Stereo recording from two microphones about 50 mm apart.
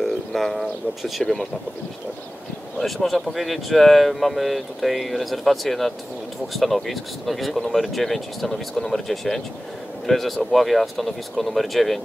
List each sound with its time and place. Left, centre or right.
0.0 s bird: centre
2.8 s speech: centre